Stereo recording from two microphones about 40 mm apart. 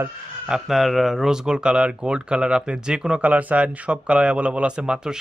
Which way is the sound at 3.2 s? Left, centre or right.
Right.